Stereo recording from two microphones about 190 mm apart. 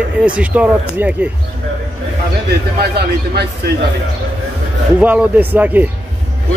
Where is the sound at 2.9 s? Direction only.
60° right (ahead or behind).